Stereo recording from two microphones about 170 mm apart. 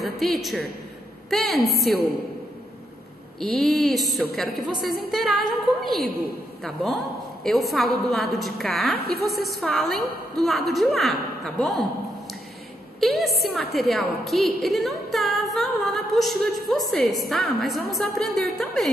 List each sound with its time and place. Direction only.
0.0 s a man's voice: centre (ahead or behind)
3.3 s a woman's voice: centre (ahead or behind)
9.0 s a woman's voice: 65° right (ahead or behind)
9.3 s a woman's voice: centre (ahead or behind)
13.0 s a woman's voice: centre (ahead or behind)